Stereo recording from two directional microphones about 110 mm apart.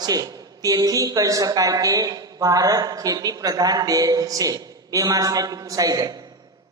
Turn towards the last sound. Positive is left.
turn(degrees=-35)  # may be behind; listen again after turning